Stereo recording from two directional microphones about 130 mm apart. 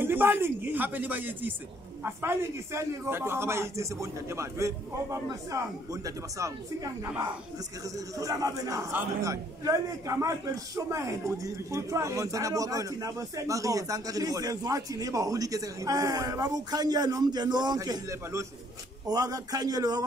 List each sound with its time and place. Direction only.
0.0 s a man's voice: 15° right (ahead or behind)